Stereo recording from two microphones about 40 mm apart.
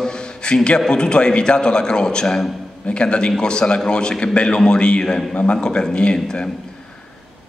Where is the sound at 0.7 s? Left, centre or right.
Left.